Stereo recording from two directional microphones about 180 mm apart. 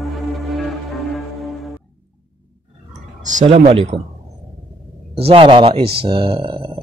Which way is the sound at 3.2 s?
45° right (ahead or behind).